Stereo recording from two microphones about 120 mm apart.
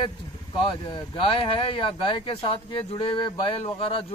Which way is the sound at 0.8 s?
50° left (ahead or behind).